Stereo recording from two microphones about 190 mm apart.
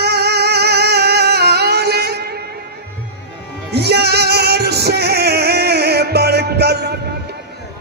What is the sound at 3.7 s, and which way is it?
Music, 60° right (ahead or behind).